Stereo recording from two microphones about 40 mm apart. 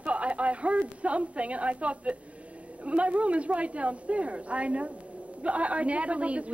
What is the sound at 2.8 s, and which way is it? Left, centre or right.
A woman's voice, right.